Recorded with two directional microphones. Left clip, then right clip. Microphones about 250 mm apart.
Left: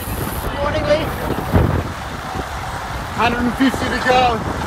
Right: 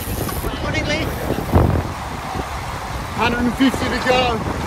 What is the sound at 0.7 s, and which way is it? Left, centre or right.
Vehicle, centre.